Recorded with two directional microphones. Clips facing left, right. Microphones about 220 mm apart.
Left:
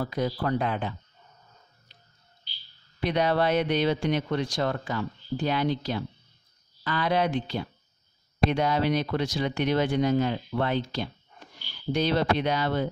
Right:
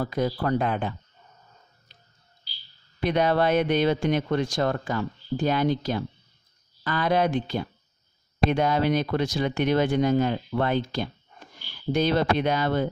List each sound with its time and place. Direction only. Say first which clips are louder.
0.0 s speech: right 2 dB; 50° right (ahead or behind)
3.0 s speech: right 2 dB; 50° right (ahead or behind)